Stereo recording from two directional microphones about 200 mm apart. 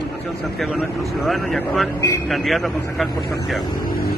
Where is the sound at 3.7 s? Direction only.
45° left (ahead or behind).